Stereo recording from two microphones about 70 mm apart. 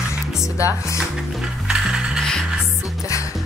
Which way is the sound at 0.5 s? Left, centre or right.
Left.